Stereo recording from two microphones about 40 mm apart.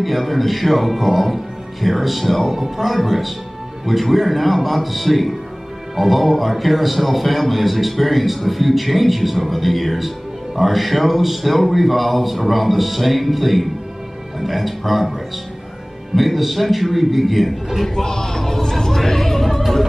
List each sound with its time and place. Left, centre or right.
0.0 s a man's voice: centre
16.2 s a man's voice: centre
18.0 s speech: centre